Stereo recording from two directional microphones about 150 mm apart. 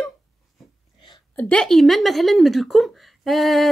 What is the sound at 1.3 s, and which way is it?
A woman's voice, 10° left (ahead or behind).